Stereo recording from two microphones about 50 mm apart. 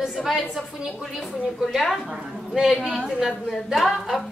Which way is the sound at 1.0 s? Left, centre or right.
Centre.